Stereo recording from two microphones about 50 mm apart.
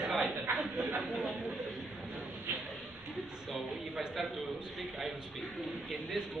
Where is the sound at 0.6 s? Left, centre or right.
Right.